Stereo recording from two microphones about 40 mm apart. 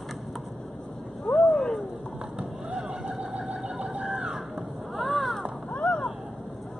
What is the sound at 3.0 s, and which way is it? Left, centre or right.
Sewing machine, right.